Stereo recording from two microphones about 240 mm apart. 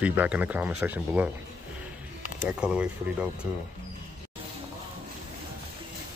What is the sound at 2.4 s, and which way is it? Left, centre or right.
Speech, centre.